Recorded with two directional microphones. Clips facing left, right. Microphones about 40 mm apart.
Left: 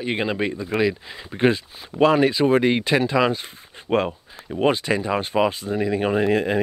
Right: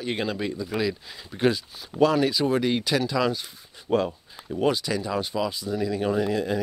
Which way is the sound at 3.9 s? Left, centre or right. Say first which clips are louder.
Left 3 dB; left.